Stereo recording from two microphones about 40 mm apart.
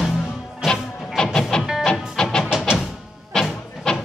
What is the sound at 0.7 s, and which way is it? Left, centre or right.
Music, centre.